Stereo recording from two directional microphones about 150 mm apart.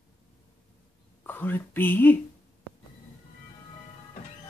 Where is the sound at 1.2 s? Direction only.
10° left (ahead or behind).